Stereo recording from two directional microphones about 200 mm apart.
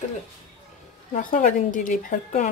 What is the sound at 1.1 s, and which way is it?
A woman's voice, 40° left (ahead or behind).